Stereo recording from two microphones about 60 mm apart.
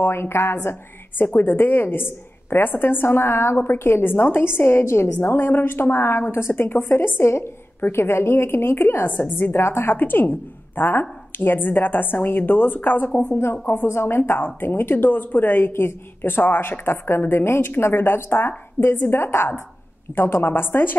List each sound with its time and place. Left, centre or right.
0.0 s a woman's voice: left
13.7 s a woman's voice: left